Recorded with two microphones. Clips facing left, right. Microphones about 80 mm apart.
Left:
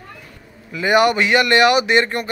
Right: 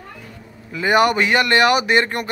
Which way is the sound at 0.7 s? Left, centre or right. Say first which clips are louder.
Left 1 dB; right.